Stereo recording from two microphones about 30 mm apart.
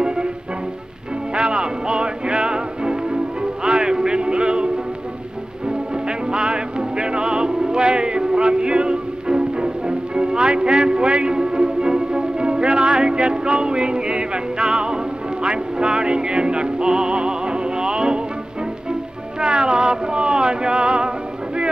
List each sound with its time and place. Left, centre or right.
0.0 s music: right
1.3 s music: right
5.7 s music: right
19.4 s a sound: right